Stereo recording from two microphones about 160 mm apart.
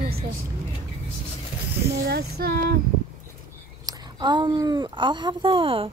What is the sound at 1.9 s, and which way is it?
Female singing, 80° right.